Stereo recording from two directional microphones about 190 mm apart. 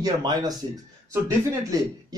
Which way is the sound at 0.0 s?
20° right (ahead or behind).